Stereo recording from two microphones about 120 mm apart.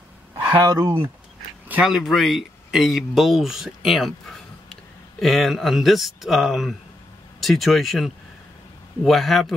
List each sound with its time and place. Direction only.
0.3 s speech: 30° right (ahead or behind)
1.7 s speech: 5° right (ahead or behind)